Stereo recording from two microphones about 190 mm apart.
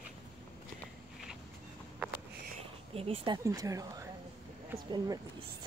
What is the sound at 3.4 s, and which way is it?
Speech, 15° right (ahead or behind).